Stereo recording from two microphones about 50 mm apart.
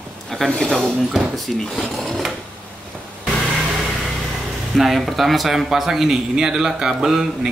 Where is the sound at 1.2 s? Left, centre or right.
Centre.